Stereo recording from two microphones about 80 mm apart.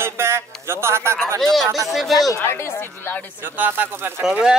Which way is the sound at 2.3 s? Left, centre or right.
Left.